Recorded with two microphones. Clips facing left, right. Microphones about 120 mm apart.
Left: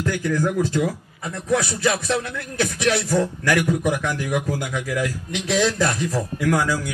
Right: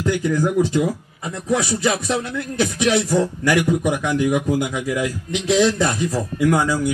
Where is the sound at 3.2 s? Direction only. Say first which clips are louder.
Right 2 dB; 25° right (ahead or behind).